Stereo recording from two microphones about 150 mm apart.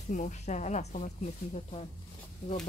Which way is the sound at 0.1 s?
55° left (ahead or behind).